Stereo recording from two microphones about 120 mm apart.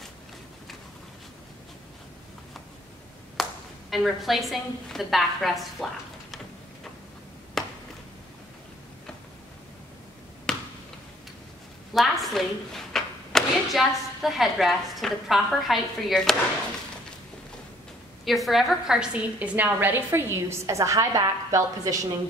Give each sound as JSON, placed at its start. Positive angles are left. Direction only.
{"t": 3.4, "sound": "clapping", "side_deg": 0}
{"t": 3.9, "sound": "a woman's voice", "side_deg": 0}
{"t": 7.6, "sound": "a sound", "side_deg": 0}
{"t": 10.5, "sound": "a sound", "side_deg": 5}
{"t": 11.9, "sound": "speech", "side_deg": 0}
{"t": 18.2, "sound": "a woman's voice", "side_deg": 0}